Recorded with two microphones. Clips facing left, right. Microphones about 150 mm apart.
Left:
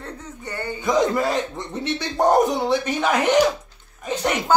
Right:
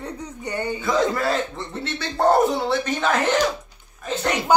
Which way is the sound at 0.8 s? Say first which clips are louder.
Left 3 dB; 15° left (ahead or behind).